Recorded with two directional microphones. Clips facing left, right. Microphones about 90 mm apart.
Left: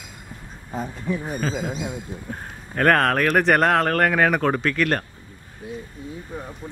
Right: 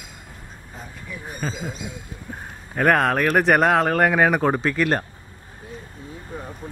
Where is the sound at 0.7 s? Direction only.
45° left (ahead or behind).